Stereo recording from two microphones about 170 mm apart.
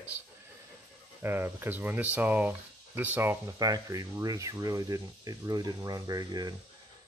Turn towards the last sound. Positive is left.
turn(degrees=-25)  # may be behind; listen again after turning